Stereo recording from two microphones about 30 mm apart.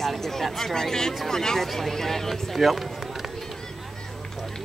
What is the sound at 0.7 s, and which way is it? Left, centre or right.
Speech, centre.